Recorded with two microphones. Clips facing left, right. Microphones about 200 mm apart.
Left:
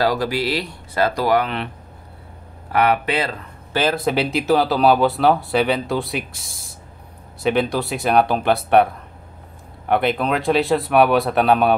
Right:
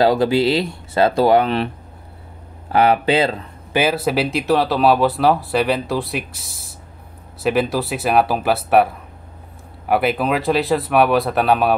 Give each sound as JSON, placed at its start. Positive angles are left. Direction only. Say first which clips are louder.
{"t": 0.0, "sound": "speech", "louder": "right 5 dB", "side_deg": -25}
{"t": 2.7, "sound": "speech", "louder": "right 3 dB", "side_deg": -30}
{"t": 3.7, "sound": "speech", "louder": "right 1 dB", "side_deg": -10}
{"t": 9.8, "sound": "speech", "louder": "right 1 dB", "side_deg": -5}